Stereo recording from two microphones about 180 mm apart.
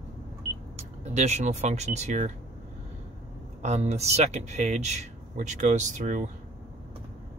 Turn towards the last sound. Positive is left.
turn(degrees=-40)  # may be behind; listen again after turning